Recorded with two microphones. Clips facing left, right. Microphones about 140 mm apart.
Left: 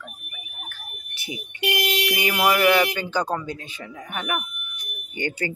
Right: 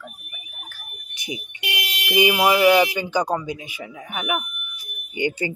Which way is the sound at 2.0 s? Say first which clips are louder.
Right 6 dB; 15° right (ahead or behind).